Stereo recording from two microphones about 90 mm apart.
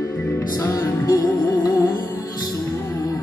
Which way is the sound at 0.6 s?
35° left (ahead or behind).